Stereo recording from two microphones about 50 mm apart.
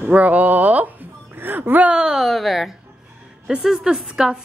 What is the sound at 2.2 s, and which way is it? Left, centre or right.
A woman's voice, centre.